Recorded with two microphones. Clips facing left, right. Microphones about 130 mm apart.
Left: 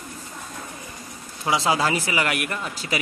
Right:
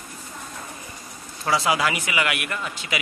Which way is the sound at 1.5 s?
25° left (ahead or behind).